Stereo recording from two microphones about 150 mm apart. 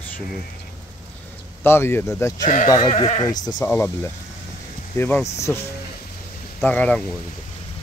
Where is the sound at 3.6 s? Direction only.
15° left (ahead or behind).